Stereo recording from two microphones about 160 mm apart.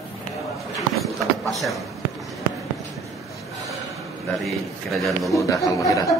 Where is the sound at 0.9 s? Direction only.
Centre (ahead or behind).